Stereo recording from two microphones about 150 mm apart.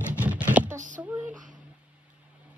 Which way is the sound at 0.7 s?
60° right (ahead or behind).